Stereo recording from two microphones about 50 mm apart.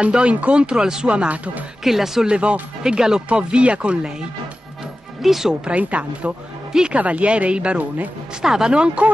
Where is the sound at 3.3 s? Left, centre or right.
Right.